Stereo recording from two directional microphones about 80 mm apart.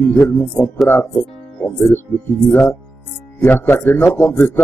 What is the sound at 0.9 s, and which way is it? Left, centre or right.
Speech, left.